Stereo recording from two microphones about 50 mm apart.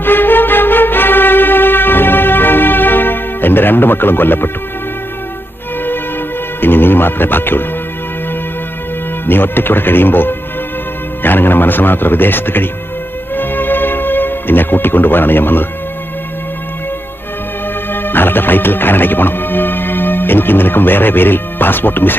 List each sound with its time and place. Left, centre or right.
0.0 s music: left
6.6 s speech: left
9.2 s a man's voice: left
13.4 s music: left
17.9 s speech: left